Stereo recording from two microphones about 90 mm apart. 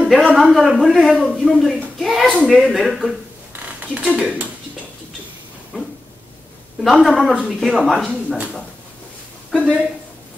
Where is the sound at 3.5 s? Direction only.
15° right (ahead or behind).